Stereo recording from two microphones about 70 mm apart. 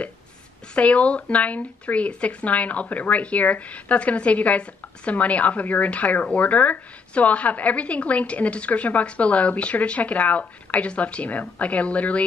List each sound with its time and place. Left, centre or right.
0.7 s speech: centre